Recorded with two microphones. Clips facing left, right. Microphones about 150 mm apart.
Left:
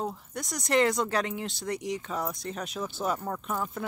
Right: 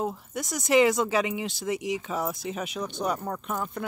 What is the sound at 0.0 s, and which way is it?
Speech, 5° right (ahead or behind).